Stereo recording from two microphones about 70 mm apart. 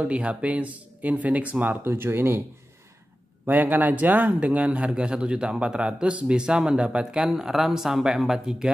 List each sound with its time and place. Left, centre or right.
0.0 s speech: centre; by 2.4 s right
3.4 s speech: right; by 8.7 s centre